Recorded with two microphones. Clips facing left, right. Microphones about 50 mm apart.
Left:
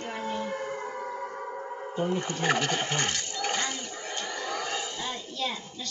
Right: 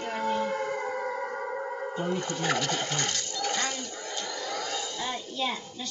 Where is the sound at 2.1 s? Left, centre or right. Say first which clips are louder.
Left 1 dB; left.